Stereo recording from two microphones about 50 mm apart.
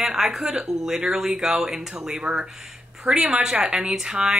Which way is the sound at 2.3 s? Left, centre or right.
Right.